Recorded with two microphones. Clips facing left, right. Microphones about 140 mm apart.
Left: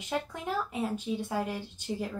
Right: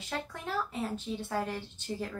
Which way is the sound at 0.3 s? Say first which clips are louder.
Left 2 dB; 15° left (ahead or behind).